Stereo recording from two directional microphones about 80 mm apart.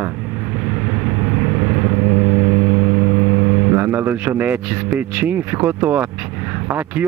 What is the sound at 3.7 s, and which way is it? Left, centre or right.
Speech, right.